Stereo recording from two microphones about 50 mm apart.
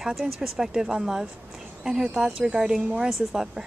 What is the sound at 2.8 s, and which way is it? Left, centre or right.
Speech, centre.